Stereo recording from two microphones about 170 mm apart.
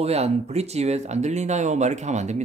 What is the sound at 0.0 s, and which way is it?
Speech, 40° right (ahead or behind).